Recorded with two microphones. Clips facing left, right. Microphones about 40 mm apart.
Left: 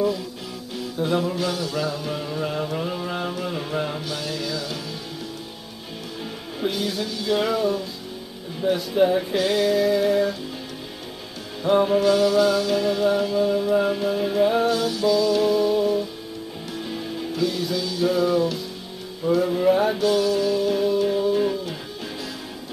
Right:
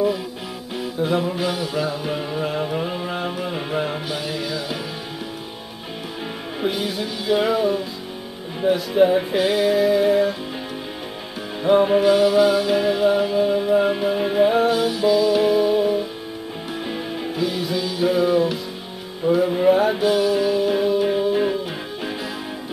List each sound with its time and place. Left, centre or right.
0.7 s music: centre
6.6 s music: centre
11.6 s music: centre